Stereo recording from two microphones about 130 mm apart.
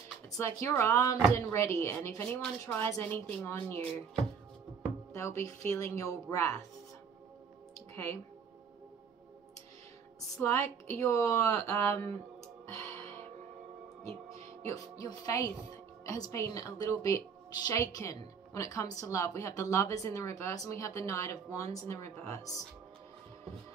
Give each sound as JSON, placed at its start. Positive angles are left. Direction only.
{"t": 0.4, "sound": "a woman's voice", "side_deg": 20}
{"t": 5.1, "sound": "a woman's voice", "side_deg": 25}
{"t": 7.9, "sound": "speech", "side_deg": 15}
{"t": 10.3, "sound": "a woman's voice", "side_deg": 20}
{"t": 15.0, "sound": "a woman's voice", "side_deg": 25}